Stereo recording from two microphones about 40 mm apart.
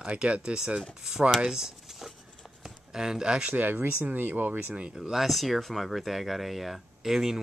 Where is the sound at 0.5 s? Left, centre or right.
Centre.